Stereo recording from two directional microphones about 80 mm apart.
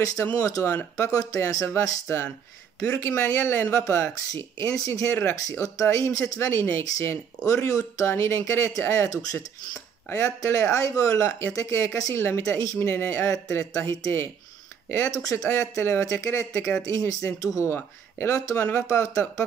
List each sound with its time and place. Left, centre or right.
0.0 s speech: left
0.7 s speech: left
1.7 s speech: left
17.7 s speech: left
18.9 s speech: left